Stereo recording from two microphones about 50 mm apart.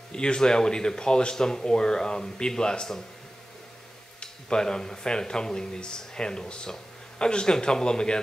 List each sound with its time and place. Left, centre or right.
0.1 s speech: centre
4.2 s speech: centre